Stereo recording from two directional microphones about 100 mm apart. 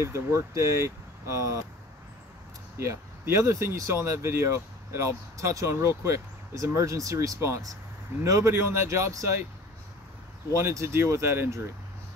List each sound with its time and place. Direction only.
0.0 s speech: 30° right (ahead or behind)
2.8 s speech: 30° right (ahead or behind)
10.5 s speech: 30° right (ahead or behind)